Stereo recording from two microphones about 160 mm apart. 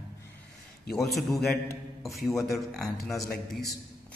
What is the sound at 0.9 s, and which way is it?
Speech, centre (ahead or behind).